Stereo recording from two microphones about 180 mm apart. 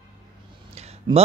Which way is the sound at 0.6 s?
35° right (ahead or behind).